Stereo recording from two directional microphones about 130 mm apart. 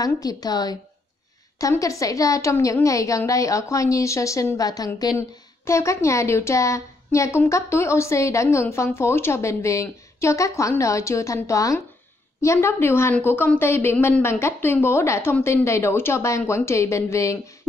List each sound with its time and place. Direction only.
0.0 s a woman's voice: 30° left (ahead or behind)